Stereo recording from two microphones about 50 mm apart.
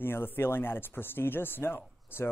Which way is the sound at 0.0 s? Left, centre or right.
Left.